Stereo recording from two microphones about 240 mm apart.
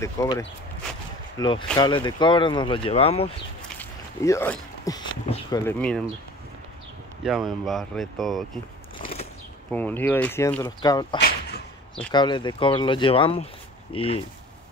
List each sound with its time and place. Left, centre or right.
0.0 s speech: centre
4.2 s speech: centre
5.2 s speech: left
5.7 s speech: centre
7.2 s speech: centre
8.9 s a sound: left
9.7 s speech: centre
11.1 s whip: left
12.1 s speech: centre